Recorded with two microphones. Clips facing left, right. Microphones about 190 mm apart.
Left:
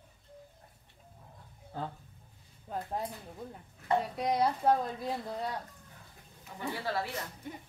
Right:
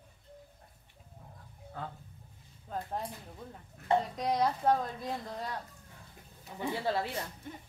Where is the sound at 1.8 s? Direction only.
30° left (ahead or behind).